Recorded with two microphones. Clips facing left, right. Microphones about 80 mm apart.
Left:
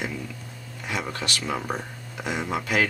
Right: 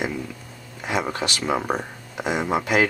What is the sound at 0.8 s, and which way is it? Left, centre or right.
Speech, right.